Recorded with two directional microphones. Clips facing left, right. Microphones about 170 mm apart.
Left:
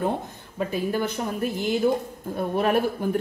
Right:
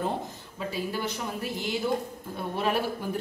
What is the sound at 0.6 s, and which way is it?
A woman's voice, 55° left (ahead or behind).